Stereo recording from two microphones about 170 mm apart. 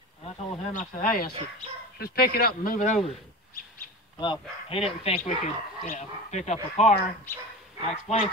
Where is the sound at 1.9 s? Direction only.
65° left (ahead or behind).